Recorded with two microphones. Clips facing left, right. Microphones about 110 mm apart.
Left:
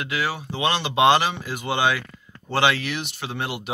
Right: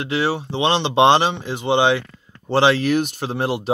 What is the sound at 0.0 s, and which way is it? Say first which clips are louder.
Speech: right 6 dB; 30° right (ahead or behind).